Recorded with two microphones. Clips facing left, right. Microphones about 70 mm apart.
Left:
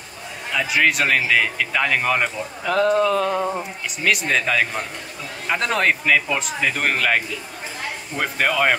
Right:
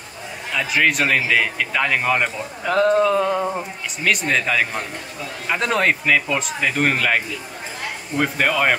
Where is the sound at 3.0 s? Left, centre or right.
Centre.